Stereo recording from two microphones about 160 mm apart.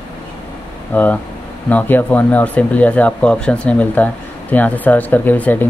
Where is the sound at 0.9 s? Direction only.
10° left (ahead or behind).